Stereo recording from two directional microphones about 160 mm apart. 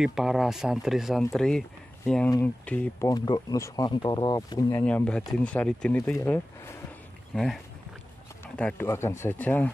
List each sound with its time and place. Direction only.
0.0 s speech: 5° right (ahead or behind)
3.1 s speech: 25° left (ahead or behind)
4.8 s speech: 5° left (ahead or behind)
7.3 s speech: centre (ahead or behind)